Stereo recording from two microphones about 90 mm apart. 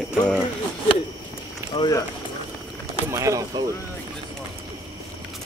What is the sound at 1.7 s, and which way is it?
Speech, 60° left (ahead or behind).